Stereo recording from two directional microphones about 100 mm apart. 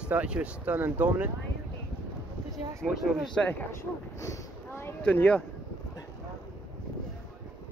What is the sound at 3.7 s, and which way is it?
Speech, 30° left (ahead or behind).